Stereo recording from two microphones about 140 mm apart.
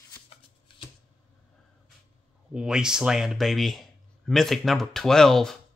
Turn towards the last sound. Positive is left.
turn(degrees=5)  # may be behind; listen again after turning